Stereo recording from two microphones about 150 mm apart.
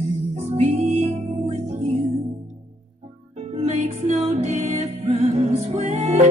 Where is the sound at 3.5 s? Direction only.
50° right (ahead or behind).